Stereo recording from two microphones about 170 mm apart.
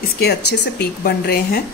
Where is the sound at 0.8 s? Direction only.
65° left (ahead or behind).